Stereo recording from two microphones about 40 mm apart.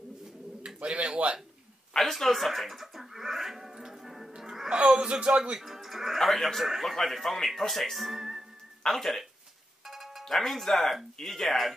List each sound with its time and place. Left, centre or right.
0.7 s a sound: right
2.0 s music: centre
4.7 s speech: right
5.6 s speech: centre
8.8 s speech: centre
9.8 s music: centre
10.2 s speech: centre